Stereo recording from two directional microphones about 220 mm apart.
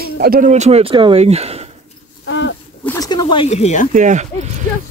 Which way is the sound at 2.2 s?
60° left (ahead or behind).